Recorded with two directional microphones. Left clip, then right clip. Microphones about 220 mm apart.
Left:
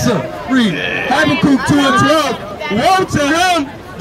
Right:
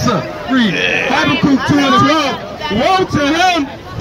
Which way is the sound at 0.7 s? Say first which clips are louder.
Right 3 dB; 40° right (ahead or behind).